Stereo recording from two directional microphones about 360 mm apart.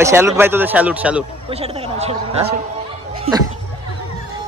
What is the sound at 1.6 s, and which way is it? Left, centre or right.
Speech, centre.